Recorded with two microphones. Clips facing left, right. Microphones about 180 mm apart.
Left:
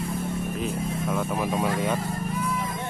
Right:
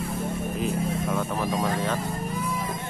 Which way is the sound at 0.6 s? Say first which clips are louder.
Right 4 dB; centre (ahead or behind).